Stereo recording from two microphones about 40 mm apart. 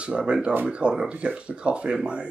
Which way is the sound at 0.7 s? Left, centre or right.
Right.